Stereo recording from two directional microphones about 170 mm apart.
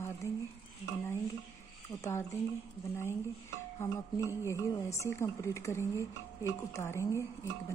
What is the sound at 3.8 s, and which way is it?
Speech, 15° left (ahead or behind).